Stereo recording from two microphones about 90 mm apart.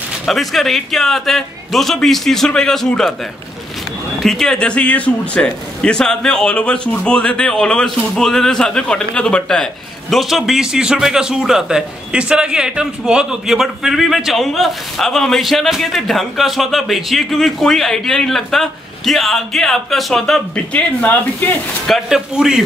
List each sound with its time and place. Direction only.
0.3 s speech: centre (ahead or behind)
4.2 s speech: 5° left (ahead or behind)
20.5 s speech: 15° left (ahead or behind)
21.8 s speech: 5° right (ahead or behind)